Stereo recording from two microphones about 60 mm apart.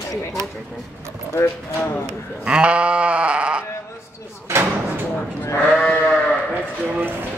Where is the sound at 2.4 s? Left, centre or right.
Centre.